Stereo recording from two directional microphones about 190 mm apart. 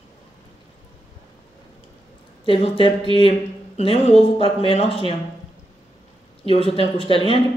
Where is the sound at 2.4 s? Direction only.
30° left (ahead or behind).